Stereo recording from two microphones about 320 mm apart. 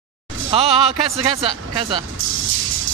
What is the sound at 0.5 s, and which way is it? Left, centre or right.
Speech, centre.